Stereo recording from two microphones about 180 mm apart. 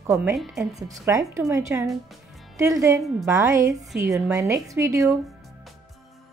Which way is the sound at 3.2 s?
20° right (ahead or behind).